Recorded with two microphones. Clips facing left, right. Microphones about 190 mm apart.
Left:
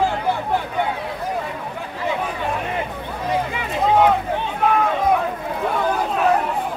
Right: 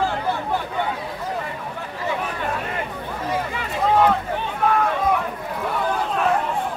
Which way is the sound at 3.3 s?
15° left (ahead or behind).